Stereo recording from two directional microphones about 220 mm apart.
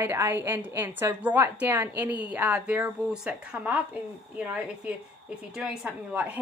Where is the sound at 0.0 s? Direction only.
10° right (ahead or behind).